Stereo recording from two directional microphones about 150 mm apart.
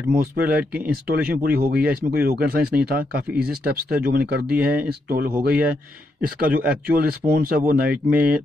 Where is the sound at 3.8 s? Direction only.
90° right.